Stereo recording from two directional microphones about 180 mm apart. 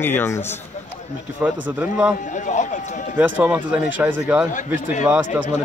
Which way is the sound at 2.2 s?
45° left (ahead or behind).